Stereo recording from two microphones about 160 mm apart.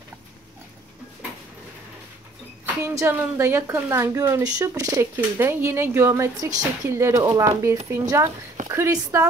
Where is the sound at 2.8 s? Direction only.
15° right (ahead or behind).